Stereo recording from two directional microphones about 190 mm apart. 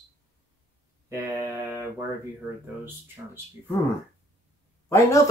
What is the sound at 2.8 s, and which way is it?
Speech, 10° right (ahead or behind).